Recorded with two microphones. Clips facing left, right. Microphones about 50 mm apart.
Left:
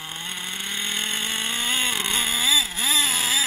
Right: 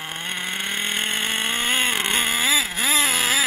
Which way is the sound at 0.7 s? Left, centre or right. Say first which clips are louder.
Right 2 dB; right.